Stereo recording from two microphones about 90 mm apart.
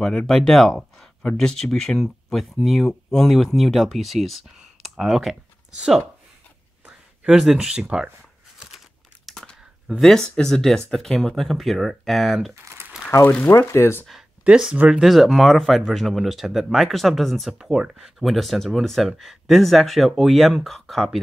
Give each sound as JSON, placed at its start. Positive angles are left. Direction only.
{"t": 0.3, "sound": "speech", "side_deg": 5}
{"t": 6.9, "sound": "speech", "side_deg": -5}
{"t": 8.5, "sound": "crumpling", "side_deg": 0}
{"t": 9.8, "sound": "speech", "side_deg": 5}
{"t": 13.2, "sound": "speech", "side_deg": 20}
{"t": 14.4, "sound": "speech", "side_deg": -10}